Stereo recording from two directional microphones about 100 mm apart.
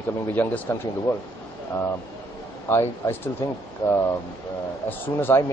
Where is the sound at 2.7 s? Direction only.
25° left (ahead or behind).